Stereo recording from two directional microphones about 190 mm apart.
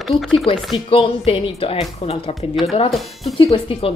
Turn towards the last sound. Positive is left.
turn(degrees=30)  # may be behind; listen again after turning